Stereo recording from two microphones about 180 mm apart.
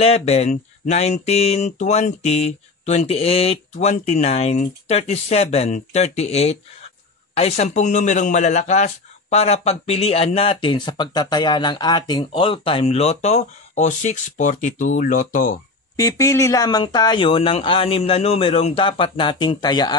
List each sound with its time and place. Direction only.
0.0 s a man's voice: 35° left (ahead or behind)
16.0 s speech: 15° left (ahead or behind)